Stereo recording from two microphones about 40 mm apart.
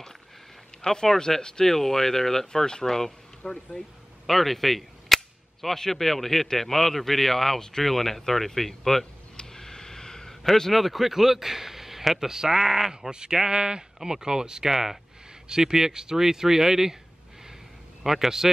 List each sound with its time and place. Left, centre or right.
1.0 s speech: centre
4.3 s cap gun: centre
9.4 s a sound: centre
13.1 s speech: centre
18.0 s speech: centre